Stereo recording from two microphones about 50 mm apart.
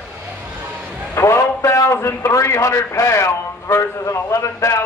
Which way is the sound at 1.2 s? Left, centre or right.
Left.